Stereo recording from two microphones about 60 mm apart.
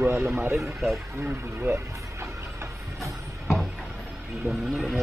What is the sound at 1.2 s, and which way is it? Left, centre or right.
Speech, right.